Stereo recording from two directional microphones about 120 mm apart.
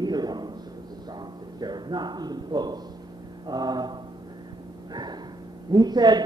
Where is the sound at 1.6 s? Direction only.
35° right (ahead or behind).